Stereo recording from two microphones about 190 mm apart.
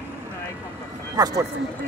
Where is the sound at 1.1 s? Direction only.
20° right (ahead or behind).